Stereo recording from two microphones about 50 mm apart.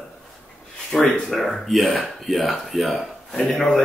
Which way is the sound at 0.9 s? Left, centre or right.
Centre.